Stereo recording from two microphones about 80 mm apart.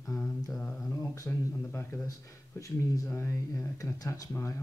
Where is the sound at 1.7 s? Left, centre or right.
Left.